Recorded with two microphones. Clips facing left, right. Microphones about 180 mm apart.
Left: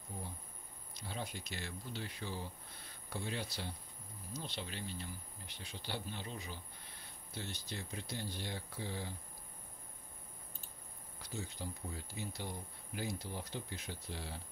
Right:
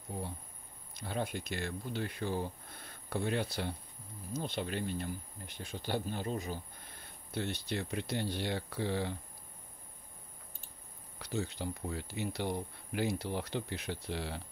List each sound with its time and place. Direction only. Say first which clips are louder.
0.1 s insect: right 6 dB; 75° right (ahead or behind)
0.9 s speech: right 8 dB; 55° right (ahead or behind)
7.3 s speech: right 9 dB; 65° right (ahead or behind)
11.1 s speech: right 8 dB; 70° right (ahead or behind)